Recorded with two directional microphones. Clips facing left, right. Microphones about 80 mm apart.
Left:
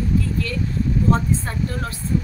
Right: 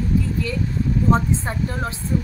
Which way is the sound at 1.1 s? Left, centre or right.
Right.